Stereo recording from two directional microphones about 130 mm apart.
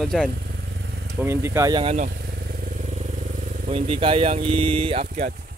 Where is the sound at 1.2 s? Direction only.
20° right (ahead or behind).